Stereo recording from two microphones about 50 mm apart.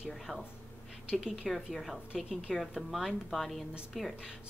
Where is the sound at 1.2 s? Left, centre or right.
Centre.